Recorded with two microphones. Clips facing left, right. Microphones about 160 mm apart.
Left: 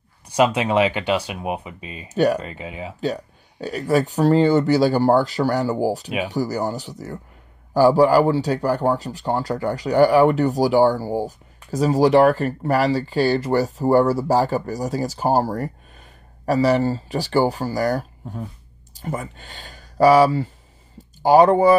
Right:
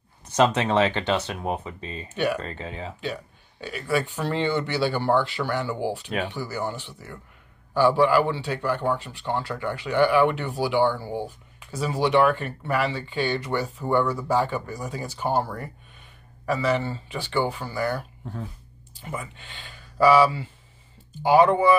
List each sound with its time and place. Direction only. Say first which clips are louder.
0.3 s speech: left 2 dB; 10° left (ahead or behind)
2.1 s speech: left 7 dB; 40° left (ahead or behind)
2.4 s speech: left 2 dB; 10° left (ahead or behind)
3.0 s speech: left 7 dB; 40° left (ahead or behind)